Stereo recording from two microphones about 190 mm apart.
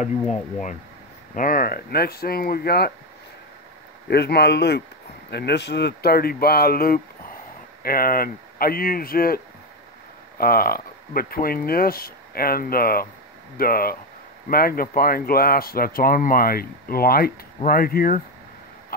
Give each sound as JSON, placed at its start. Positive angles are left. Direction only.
{"t": 1.3, "sound": "speech", "side_deg": 45}
{"t": 4.1, "sound": "speech", "side_deg": 60}